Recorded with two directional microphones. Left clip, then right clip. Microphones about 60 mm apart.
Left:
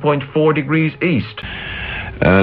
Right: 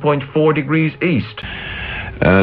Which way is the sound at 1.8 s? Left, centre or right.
Right.